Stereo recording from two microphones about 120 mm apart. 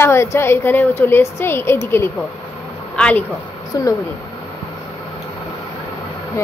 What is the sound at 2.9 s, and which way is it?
Speech, 10° left (ahead or behind).